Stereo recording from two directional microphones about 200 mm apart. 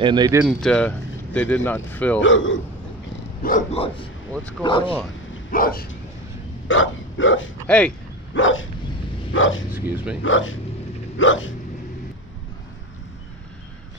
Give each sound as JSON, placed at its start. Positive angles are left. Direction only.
{"t": 0.0, "sound": "speech", "side_deg": -20}
{"t": 0.5, "sound": "speech", "side_deg": 5}
{"t": 2.1, "sound": "speech", "side_deg": 70}
{"t": 3.7, "sound": "speech", "side_deg": 30}
{"t": 4.3, "sound": "speech", "side_deg": 5}
{"t": 4.6, "sound": "speech", "side_deg": 25}
{"t": 5.5, "sound": "dog", "side_deg": 45}
{"t": 6.7, "sound": "dog", "side_deg": 75}
{"t": 7.6, "sound": "speech", "side_deg": 5}
{"t": 8.4, "sound": "speech", "side_deg": 75}
{"t": 9.7, "sound": "speech", "side_deg": -10}
{"t": 10.2, "sound": "speech", "side_deg": 70}